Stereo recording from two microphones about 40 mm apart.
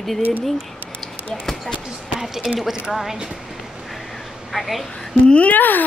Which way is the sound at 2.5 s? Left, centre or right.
Centre.